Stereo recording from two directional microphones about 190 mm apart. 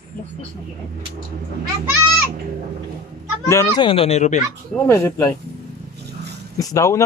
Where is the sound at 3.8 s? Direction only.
30° left (ahead or behind).